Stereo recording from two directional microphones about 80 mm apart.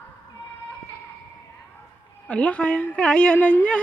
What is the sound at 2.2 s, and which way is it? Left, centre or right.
Speech, centre.